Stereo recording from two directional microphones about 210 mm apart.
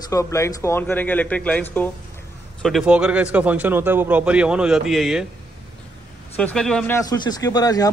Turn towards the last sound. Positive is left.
turn(degrees=15)  # may be behind; listen again after turning